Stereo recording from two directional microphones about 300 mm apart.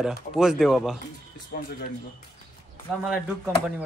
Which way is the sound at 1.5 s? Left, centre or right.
Left.